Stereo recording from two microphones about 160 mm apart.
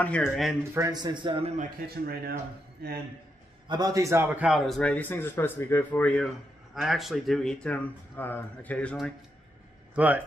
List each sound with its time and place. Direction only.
0.0 s speech: 5° left (ahead or behind)
0.7 s a man's voice: 25° right (ahead or behind)
1.9 s speech: 75° right (ahead or behind)
3.6 s a man's voice: 25° right (ahead or behind)
4.5 s a man's voice: centre (ahead or behind)
9.9 s a man's voice: 10° right (ahead or behind)